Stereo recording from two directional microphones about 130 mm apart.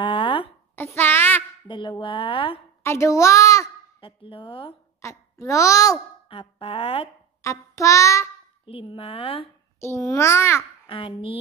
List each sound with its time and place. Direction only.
0.0 s a sound: 40° left (ahead or behind)
0.7 s a sound: 15° left (ahead or behind)
1.7 s speech: 40° left (ahead or behind)
2.8 s a child's voice: 20° left (ahead or behind)
4.0 s a woman's voice: 45° left (ahead or behind)
5.0 s speech: 20° left (ahead or behind)
6.2 s a woman's voice: 45° left (ahead or behind)
7.4 s a child's voice: 25° left (ahead or behind)
8.6 s a woman's voice: 45° left (ahead or behind)
9.8 s a child's voice: 20° left (ahead or behind)
10.9 s a woman's voice: 40° left (ahead or behind)